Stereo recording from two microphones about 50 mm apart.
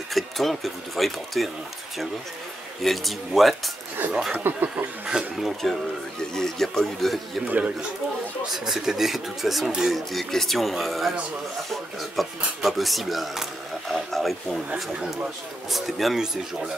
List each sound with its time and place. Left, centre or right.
0.1 s speech: centre
2.8 s speech: centre
4.4 s speech: right
5.0 s speech: centre
5.4 s speech: centre
7.4 s speech: right
8.5 s speech: centre
14.7 s speech: right
15.7 s speech: centre